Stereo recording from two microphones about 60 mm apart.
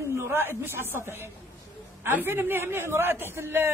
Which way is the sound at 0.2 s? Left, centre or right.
Right.